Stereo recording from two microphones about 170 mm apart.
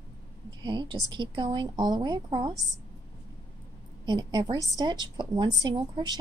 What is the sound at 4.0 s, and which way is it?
A woman's voice, 25° right (ahead or behind).